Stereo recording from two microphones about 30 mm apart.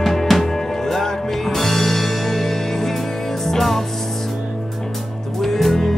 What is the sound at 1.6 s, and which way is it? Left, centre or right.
Music, centre.